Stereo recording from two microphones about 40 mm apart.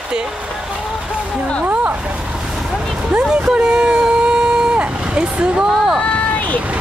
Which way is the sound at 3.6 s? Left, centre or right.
Right.